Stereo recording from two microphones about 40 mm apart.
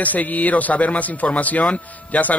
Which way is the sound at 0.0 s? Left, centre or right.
Left.